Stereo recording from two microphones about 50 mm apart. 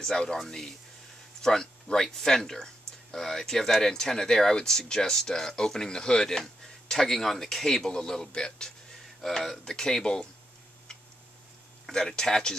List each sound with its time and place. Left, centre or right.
0.0 s speech: centre
11.8 s speech: centre